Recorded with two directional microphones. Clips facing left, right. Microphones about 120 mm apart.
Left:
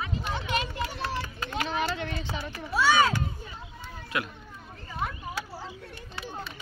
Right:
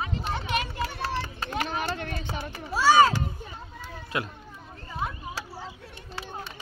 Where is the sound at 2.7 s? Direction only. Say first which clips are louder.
Right 4 dB; 35° right (ahead or behind).